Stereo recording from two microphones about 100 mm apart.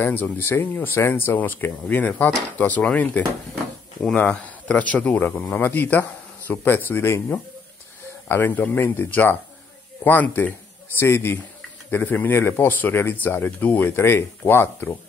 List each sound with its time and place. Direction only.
0.0 s speech: 20° left (ahead or behind)